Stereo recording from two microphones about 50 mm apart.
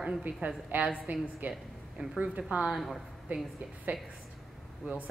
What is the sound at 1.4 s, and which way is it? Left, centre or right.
Speech, right.